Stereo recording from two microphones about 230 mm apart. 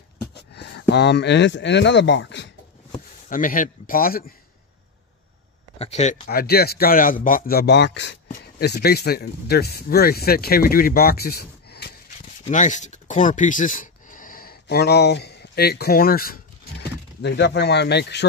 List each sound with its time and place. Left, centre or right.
0.3 s speech: left
3.3 s speech: left
5.8 s speech: left
6.2 s speech: left
12.4 s speech: left